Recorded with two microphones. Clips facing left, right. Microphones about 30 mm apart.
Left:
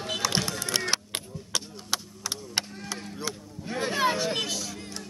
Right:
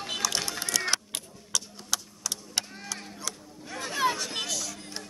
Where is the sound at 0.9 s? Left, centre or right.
Left.